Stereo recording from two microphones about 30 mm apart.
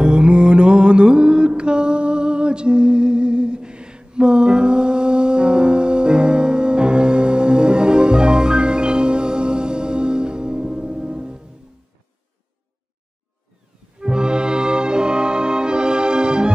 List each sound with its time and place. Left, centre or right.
0.0 s mantra: right
13.9 s music: right